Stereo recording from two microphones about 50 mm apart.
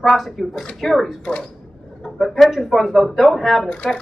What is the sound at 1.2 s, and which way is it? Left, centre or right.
Speech, left.